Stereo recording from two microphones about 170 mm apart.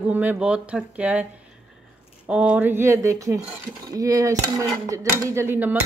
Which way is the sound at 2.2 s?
5° right (ahead or behind).